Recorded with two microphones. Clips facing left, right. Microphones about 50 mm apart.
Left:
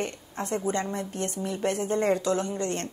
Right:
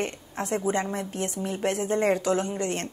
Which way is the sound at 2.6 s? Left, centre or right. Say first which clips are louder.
Right 1 dB; centre.